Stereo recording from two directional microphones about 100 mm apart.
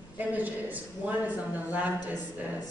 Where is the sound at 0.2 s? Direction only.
15° right (ahead or behind).